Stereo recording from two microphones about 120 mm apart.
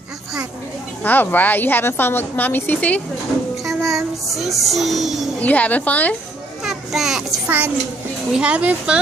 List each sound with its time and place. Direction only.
1.0 s a woman's voice: 15° left (ahead or behind)
3.6 s music: centre (ahead or behind)
5.4 s a woman's voice: 15° left (ahead or behind)
6.6 s a child's voice: 5° right (ahead or behind)
7.4 s speech: 15° right (ahead or behind)